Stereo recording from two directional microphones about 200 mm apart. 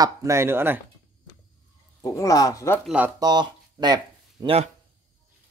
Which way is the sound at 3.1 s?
20° right (ahead or behind).